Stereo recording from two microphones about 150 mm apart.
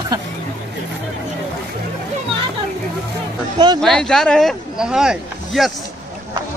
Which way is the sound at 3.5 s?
30° right (ahead or behind).